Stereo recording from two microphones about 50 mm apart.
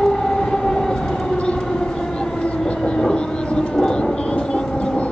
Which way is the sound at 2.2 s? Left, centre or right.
Centre.